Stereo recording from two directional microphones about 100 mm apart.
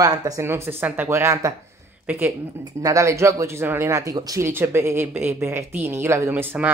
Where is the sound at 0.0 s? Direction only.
35° right (ahead or behind).